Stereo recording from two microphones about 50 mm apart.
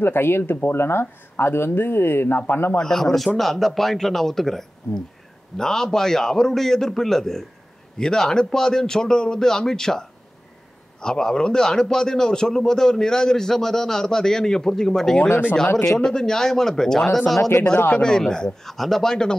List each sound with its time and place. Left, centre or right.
0.0 s speech: left
2.8 s a man's voice: centre
17.4 s speech: left
18.0 s a man's voice: centre